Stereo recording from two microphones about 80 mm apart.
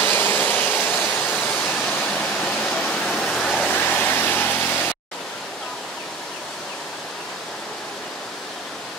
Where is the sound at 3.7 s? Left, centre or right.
Left.